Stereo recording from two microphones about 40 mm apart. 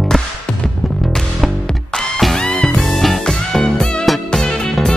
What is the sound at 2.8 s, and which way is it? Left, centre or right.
Music, centre.